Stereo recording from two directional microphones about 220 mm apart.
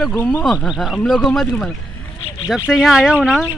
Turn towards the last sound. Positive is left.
turn(degrees=-5)  # may be behind; listen again after turning